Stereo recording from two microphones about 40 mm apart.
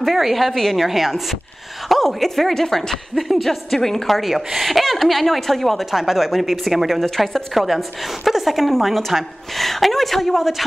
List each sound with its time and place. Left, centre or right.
0.0 s a woman's voice: centre
0.8 s a woman's voice: centre
4.2 s a woman's voice: centre
6.9 s a woman's voice: centre